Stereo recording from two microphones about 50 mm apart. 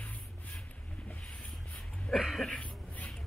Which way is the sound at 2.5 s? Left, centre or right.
Left.